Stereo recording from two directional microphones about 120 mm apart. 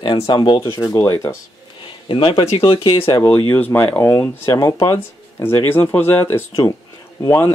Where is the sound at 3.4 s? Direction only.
15° left (ahead or behind).